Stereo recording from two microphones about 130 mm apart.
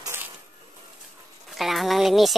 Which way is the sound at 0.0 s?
20° right (ahead or behind).